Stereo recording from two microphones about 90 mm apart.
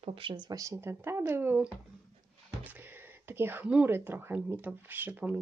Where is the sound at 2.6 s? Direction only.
20° right (ahead or behind).